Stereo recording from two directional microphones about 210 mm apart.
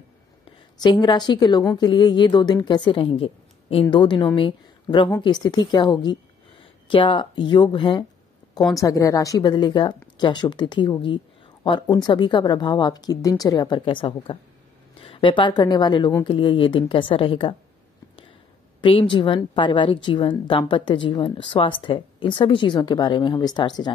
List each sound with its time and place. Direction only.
0.5 s a woman's voice: 20° left (ahead or behind)
18.8 s a woman's voice: 25° left (ahead or behind)